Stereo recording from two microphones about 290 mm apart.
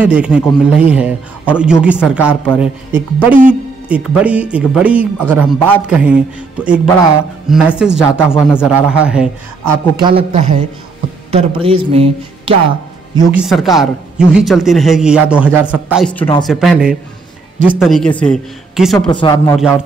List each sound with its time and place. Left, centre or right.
0.0 s speech: centre
7.4 s speech: centre
8.0 s speech: centre
8.5 s speech: centre
9.9 s a man's voice: centre
13.1 s speech: centre
19.0 s speech: centre